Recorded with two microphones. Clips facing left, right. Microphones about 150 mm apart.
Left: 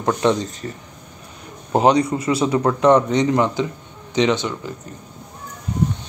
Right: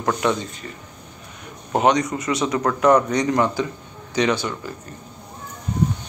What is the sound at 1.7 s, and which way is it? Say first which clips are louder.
A man's voice: left 3 dB; 30° left (ahead or behind).